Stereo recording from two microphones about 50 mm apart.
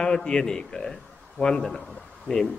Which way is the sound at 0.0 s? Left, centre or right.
Centre.